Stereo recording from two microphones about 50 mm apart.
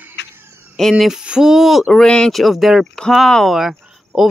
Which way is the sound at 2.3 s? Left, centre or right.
Centre.